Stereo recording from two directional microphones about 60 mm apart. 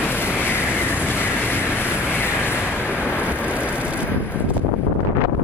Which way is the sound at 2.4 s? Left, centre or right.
Left.